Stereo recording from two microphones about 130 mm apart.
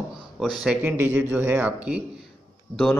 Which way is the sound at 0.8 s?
15° right (ahead or behind).